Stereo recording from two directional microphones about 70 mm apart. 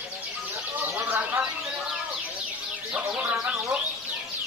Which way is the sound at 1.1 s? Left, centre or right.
Right.